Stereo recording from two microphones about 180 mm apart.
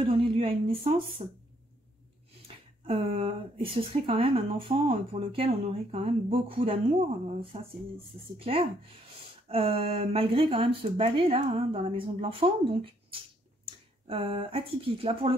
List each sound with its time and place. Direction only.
0.0 s speech: 30° right (ahead or behind)
2.4 s speech: 30° right (ahead or behind)